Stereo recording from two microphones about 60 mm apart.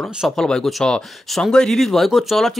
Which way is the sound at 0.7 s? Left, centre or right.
Centre.